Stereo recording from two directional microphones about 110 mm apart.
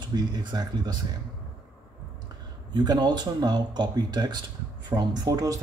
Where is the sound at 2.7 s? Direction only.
40° right (ahead or behind).